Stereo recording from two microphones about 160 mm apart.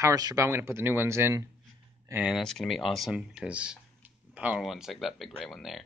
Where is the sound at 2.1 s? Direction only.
5° right (ahead or behind).